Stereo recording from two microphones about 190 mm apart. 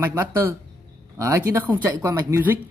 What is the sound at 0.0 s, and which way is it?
Speech, 10° right (ahead or behind).